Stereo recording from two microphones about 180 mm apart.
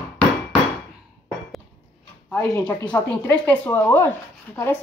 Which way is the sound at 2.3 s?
5° left (ahead or behind).